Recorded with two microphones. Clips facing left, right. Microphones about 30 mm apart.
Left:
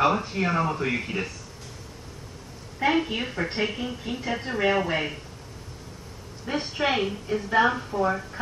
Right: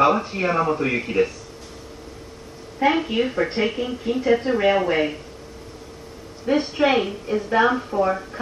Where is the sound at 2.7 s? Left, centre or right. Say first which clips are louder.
Right 4 dB; centre.